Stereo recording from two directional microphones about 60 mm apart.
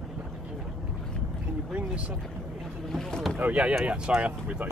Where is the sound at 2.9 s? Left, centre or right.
Centre.